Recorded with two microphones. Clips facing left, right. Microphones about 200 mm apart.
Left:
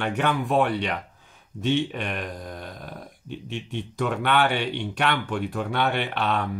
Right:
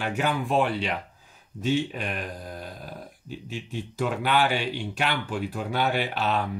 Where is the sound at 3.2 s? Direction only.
5° right (ahead or behind).